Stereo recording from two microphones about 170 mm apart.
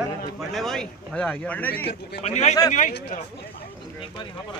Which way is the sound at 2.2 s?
40° left (ahead or behind).